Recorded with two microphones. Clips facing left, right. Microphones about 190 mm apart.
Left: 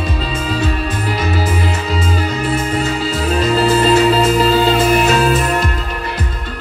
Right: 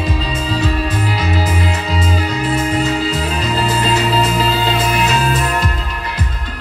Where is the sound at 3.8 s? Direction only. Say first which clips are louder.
Left 4 dB; 50° left (ahead or behind).